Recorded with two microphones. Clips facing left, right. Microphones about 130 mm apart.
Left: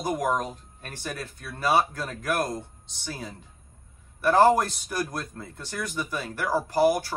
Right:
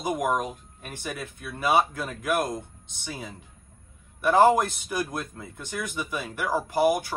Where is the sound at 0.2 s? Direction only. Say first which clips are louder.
Even; 15° right (ahead or behind).